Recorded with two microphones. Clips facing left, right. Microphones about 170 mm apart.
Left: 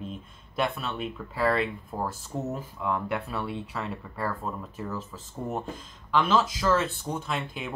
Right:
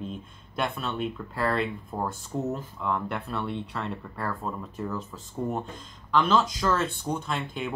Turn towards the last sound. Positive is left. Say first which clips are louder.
# right 1 dB
turn(degrees=0)  # may be behind; listen again after turning